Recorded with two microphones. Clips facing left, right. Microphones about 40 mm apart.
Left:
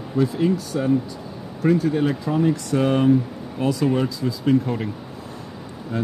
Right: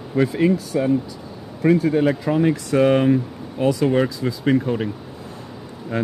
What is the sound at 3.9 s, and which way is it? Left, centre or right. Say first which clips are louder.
Speech: right 3 dB; right.